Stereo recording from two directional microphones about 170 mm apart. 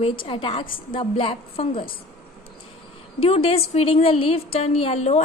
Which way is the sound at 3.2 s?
35° left (ahead or behind).